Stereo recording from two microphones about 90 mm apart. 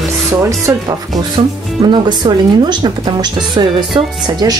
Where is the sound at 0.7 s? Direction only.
20° right (ahead or behind).